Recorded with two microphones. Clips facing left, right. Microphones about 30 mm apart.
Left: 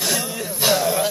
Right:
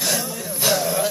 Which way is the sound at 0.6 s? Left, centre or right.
Centre.